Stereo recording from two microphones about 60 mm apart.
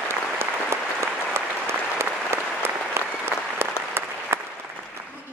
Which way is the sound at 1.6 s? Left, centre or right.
Right.